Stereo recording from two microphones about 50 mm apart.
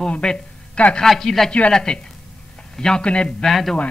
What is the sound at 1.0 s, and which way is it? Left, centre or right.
Speech, centre.